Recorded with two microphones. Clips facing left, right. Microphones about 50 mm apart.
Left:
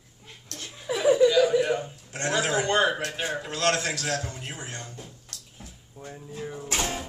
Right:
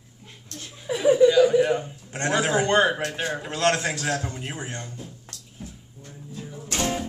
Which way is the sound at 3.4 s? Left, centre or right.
Right.